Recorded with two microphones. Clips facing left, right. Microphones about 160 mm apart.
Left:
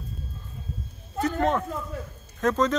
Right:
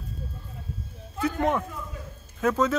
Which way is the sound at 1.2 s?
15° right (ahead or behind).